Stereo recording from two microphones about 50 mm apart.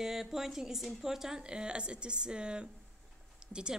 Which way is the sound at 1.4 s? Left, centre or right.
Centre.